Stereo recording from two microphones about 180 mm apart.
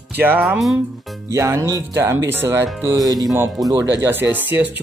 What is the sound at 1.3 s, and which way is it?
Speech, 15° right (ahead or behind).